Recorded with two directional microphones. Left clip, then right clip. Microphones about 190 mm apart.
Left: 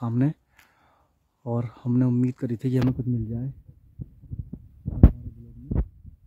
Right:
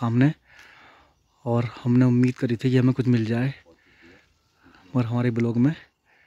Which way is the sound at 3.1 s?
10° right (ahead or behind).